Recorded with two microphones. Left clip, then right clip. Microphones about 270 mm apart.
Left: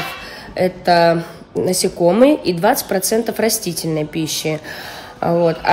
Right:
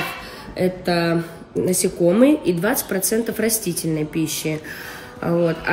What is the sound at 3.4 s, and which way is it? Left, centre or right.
Speech, centre.